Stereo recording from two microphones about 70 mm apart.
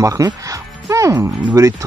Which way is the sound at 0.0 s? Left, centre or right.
Right.